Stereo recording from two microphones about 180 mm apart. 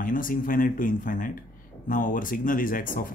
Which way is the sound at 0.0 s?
50° left (ahead or behind).